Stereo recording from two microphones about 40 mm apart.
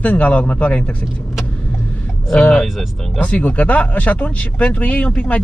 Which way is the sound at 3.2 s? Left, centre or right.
Left.